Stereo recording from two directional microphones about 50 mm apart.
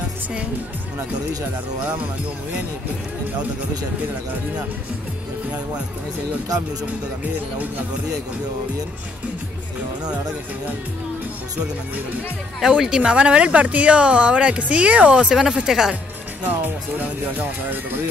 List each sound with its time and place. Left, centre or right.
12.5 s speech: centre
16.4 s speech: right